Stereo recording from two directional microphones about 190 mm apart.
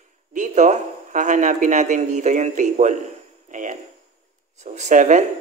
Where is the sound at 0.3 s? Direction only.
40° right (ahead or behind).